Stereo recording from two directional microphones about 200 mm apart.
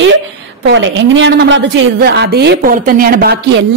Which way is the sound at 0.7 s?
65° right (ahead or behind).